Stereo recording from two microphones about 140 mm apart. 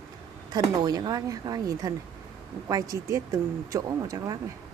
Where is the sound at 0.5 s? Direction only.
30° right (ahead or behind).